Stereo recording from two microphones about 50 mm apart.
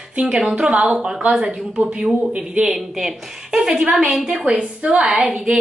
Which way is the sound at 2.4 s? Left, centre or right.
Centre.